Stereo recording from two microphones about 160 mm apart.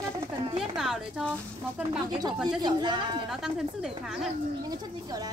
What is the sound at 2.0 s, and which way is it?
A child's voice, 25° right (ahead or behind).